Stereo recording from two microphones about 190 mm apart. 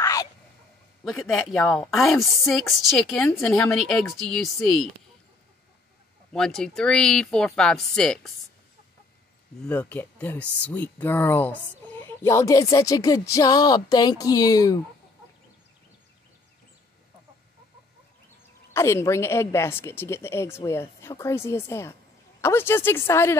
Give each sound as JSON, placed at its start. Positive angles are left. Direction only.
{"t": 0.0, "sound": "whispering", "side_deg": 15}
{"t": 1.1, "sound": "speech", "side_deg": 0}
{"t": 6.3, "sound": "speech", "side_deg": 5}
{"t": 9.7, "sound": "a woman's voice", "side_deg": 10}
{"t": 18.7, "sound": "a woman's voice", "side_deg": 15}